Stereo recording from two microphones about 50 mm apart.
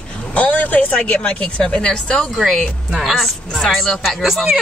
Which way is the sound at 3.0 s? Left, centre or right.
Centre.